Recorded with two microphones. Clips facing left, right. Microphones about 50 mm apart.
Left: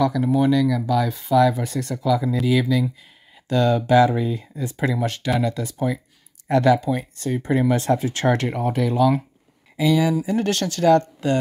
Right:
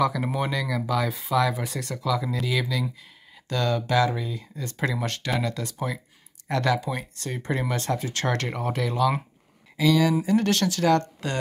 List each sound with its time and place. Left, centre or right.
0.3 s speech: centre
3.4 s speech: centre
4.6 s speech: centre
7.7 s speech: centre